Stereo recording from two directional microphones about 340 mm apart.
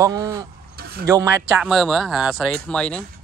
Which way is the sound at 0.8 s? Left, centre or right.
Right.